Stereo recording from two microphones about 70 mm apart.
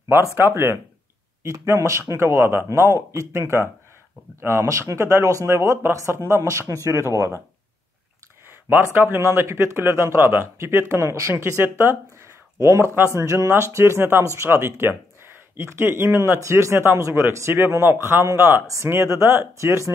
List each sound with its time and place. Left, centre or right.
0.1 s speech: right
1.4 s a man's voice: right
8.5 s a man's voice: right